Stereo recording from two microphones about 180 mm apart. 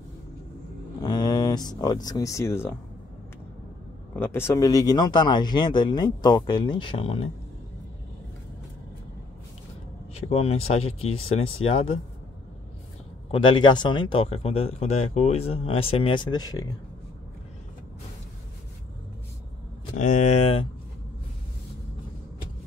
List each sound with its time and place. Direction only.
1.0 s speech: 20° left (ahead or behind)
4.1 s speech: 10° left (ahead or behind); by 7.2 s 35° left (ahead or behind)
10.1 s speech: 35° left (ahead or behind)
13.3 s speech: 25° left (ahead or behind)
20.0 s speech: 40° left (ahead or behind)